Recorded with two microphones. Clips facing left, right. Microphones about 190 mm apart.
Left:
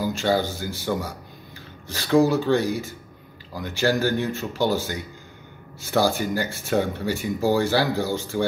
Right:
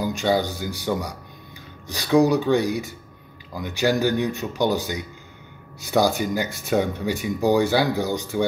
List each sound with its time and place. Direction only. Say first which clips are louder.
0.0 s speech: right 1 dB; 15° right (ahead or behind)